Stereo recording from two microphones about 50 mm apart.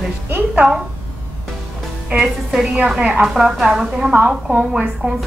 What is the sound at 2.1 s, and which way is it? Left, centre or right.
Speech, right.